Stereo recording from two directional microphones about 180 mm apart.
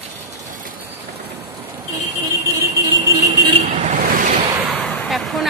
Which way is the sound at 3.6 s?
40° right (ahead or behind).